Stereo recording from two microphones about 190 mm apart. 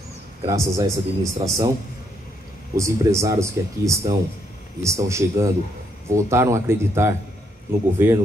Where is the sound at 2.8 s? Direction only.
15° right (ahead or behind).